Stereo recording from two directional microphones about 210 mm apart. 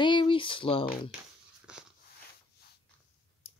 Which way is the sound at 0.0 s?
25° left (ahead or behind).